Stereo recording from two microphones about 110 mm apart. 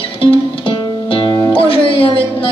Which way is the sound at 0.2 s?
50° left (ahead or behind).